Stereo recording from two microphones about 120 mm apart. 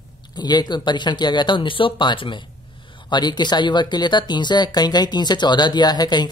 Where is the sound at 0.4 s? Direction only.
35° left (ahead or behind).